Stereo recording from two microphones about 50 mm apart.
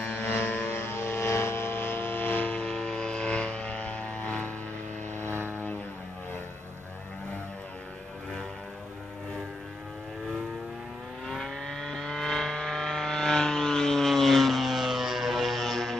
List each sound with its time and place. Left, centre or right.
0.0 s vehicle: left
2.5 s vehicle: centre
5.2 s vehicle: right
11.2 s vehicle: centre